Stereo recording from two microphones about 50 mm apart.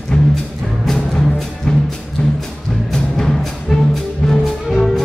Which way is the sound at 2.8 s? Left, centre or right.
Centre.